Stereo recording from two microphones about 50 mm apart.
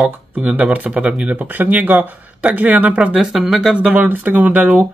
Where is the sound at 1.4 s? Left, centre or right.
Right.